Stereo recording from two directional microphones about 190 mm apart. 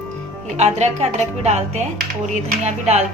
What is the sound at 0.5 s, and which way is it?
A woman's voice, 35° right (ahead or behind).